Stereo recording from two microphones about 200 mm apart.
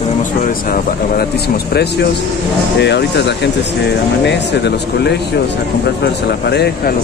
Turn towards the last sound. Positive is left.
turn(degrees=55)  # may be behind; listen again after turning